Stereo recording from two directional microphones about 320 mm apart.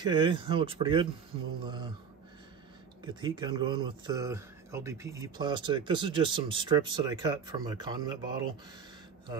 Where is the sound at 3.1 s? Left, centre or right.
Centre.